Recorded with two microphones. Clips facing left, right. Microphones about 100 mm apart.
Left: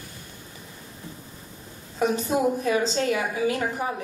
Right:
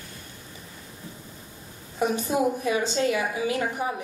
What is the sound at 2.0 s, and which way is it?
Speech, 20° right (ahead or behind).